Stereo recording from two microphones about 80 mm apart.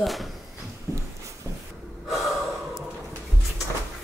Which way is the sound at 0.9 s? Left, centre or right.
Right.